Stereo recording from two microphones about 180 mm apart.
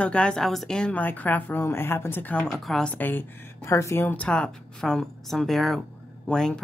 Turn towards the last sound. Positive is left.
turn(degrees=5)  # may be behind; listen again after turning